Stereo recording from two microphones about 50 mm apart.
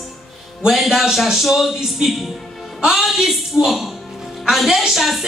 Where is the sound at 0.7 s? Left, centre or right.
Centre.